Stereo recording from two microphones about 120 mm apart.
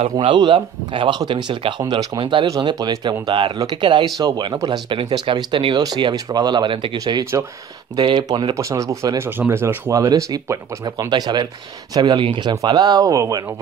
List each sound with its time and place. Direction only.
0.2 s speech: 45° right (ahead or behind)
4.9 s speech: 45° right (ahead or behind)
8.5 s speech: 25° right (ahead or behind)